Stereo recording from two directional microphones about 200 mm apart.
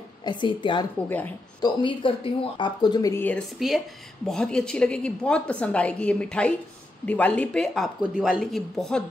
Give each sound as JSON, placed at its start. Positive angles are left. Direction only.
{"t": 0.2, "sound": "speech", "side_deg": 25}
{"t": 1.0, "sound": "speech", "side_deg": 10}
{"t": 1.6, "sound": "a woman's voice", "side_deg": 25}